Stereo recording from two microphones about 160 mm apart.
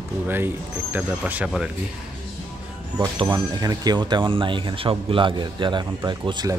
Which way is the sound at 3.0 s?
25° right (ahead or behind).